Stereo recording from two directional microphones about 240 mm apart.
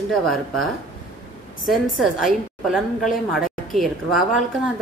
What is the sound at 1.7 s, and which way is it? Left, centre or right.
A woman's voice, centre.